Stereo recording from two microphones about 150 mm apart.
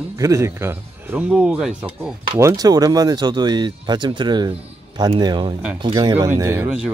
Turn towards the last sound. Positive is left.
turn(degrees=-20)  # may be behind; listen again after turning